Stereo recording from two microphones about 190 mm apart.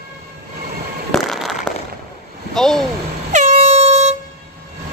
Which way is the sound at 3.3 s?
40° right (ahead or behind).